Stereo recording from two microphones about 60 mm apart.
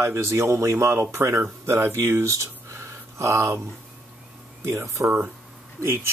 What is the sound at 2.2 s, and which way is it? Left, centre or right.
Speech, right.